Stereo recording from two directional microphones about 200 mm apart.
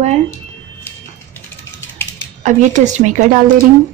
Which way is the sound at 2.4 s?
35° right (ahead or behind).